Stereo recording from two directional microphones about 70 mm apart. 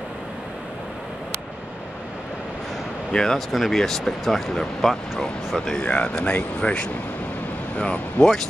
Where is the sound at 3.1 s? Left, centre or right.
Centre.